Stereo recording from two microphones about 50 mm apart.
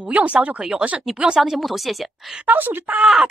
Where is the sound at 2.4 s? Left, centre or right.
Right.